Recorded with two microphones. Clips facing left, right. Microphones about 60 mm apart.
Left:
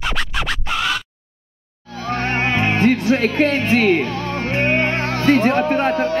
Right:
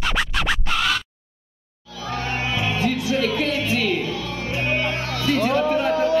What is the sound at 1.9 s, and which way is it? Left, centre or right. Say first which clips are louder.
Music: left 5 dB; left.